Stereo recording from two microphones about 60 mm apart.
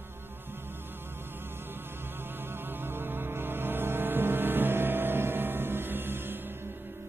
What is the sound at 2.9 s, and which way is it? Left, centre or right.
Music, right.